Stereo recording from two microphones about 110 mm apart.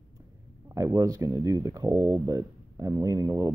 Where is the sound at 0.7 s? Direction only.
30° right (ahead or behind).